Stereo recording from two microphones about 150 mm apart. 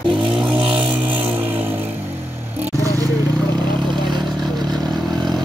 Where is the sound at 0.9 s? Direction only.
10° right (ahead or behind).